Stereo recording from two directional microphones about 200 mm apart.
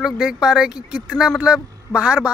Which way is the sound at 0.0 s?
5° right (ahead or behind).